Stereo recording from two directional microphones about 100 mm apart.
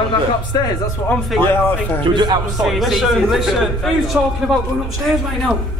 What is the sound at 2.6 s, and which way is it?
A man's voice, centre (ahead or behind).